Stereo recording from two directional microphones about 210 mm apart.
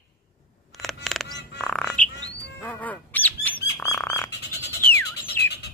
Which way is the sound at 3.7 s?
10° left (ahead or behind).